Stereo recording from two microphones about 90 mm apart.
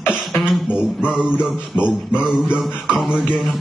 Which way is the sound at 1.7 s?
25° left (ahead or behind).